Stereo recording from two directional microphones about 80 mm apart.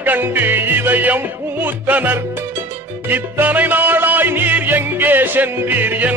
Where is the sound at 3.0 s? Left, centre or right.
Right.